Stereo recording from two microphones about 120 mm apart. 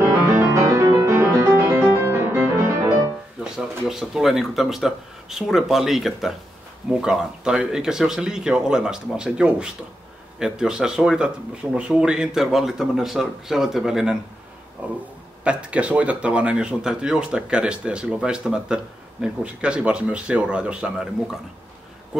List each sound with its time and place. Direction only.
0.0 s music: 20° right (ahead or behind)
3.5 s speech: 5° right (ahead or behind)
14.8 s a sound: 10° right (ahead or behind)
15.4 s speech: 10° right (ahead or behind)